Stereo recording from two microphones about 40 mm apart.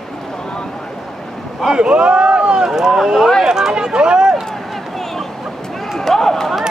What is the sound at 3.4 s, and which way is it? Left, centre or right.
Run, centre.